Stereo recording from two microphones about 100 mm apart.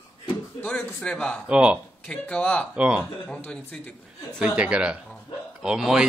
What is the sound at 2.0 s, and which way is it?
Speech, 10° left (ahead or behind).